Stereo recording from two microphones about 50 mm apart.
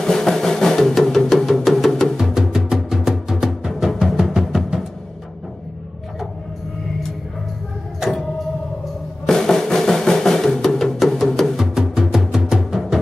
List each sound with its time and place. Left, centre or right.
0.0 s music: centre
2.3 s music: centre
9.2 s music: centre
11.5 s music: centre